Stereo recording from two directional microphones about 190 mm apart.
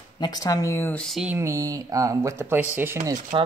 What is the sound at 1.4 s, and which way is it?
Speech, 15° right (ahead or behind).